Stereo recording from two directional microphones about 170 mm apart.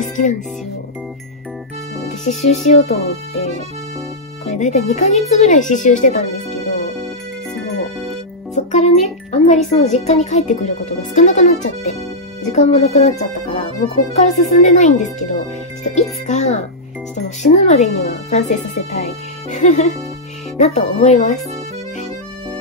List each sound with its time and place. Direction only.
0.0 s music: 45° left (ahead or behind)
2.2 s speech: 40° left (ahead or behind)
4.5 s speech: 45° left (ahead or behind)
8.5 s music: 40° left (ahead or behind)
9.7 s speech: 40° left (ahead or behind)
16.3 s music: 40° left (ahead or behind)
17.4 s speech: 45° left (ahead or behind)